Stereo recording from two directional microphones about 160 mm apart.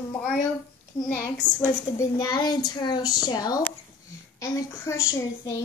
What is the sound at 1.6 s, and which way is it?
A child's voice, 20° left (ahead or behind).